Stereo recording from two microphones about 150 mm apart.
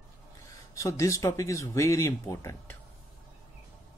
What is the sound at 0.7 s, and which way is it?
Speech, 20° left (ahead or behind).